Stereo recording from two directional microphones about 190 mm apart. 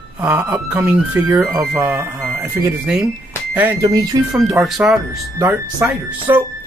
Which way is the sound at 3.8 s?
20° right (ahead or behind).